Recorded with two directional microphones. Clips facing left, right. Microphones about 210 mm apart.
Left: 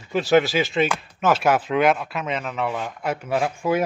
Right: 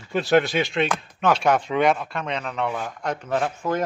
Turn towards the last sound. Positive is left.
turn(degrees=10)  # may be behind; listen again after turning